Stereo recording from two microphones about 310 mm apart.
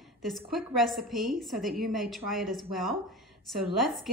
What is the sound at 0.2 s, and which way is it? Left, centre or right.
A woman's voice, centre.